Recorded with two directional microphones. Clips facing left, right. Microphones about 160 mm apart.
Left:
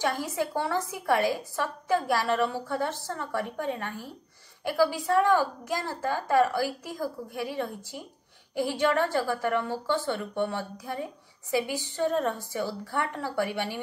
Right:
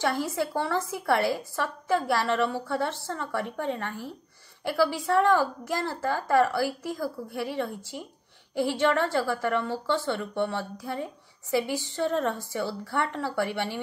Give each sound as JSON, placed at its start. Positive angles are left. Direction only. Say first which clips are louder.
{"t": 0.0, "sound": "a woman's voice", "louder": "right 1 dB", "side_deg": 15}